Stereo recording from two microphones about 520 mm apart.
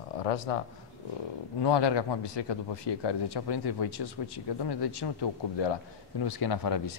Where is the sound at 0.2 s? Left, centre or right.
Left.